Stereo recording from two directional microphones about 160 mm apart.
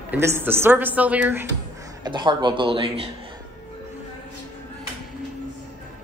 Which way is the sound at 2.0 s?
30° right (ahead or behind).